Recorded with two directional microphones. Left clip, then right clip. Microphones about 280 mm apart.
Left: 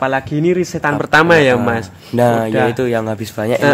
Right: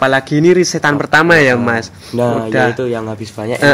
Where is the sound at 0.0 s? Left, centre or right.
Centre.